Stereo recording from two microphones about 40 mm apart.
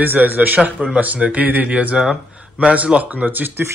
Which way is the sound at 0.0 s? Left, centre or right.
Right.